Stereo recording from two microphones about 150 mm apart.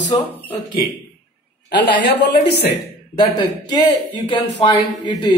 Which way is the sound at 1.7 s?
90° left.